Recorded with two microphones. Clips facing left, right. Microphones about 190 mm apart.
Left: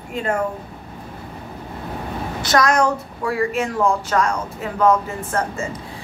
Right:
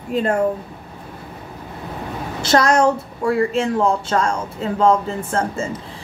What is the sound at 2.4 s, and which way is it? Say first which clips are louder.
A woman's voice: right 2 dB; 30° right (ahead or behind).